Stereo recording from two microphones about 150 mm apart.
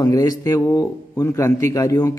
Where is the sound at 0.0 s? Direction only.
25° left (ahead or behind).